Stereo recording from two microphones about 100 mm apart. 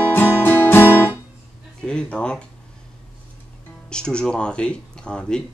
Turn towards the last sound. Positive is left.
turn(degrees=10)  # may be behind; listen again after turning